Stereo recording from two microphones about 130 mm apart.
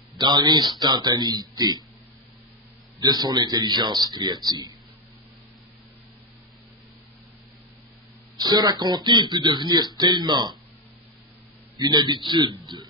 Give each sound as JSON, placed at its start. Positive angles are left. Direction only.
{"t": 0.2, "sound": "speech", "side_deg": -35}
{"t": 3.0, "sound": "speech", "side_deg": -30}
{"t": 8.4, "sound": "speech", "side_deg": -30}
{"t": 11.8, "sound": "speech", "side_deg": -35}